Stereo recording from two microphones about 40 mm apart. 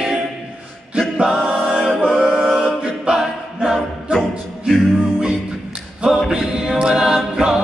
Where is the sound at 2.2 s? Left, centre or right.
Centre.